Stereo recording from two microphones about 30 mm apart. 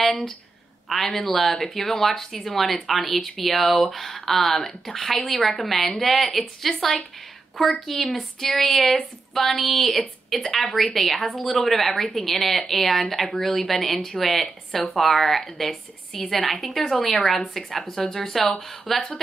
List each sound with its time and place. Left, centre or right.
0.8 s speech: centre
2.9 s a woman's voice: centre
7.8 s a woman's voice: centre
17.9 s speech: centre
18.3 s a woman's voice: centre